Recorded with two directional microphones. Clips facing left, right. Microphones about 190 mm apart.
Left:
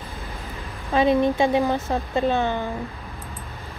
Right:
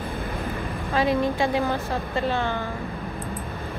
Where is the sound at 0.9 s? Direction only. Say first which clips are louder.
Left 4 dB; 20° left (ahead or behind).